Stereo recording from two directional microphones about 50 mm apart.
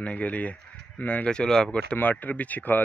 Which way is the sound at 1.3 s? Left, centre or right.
Centre.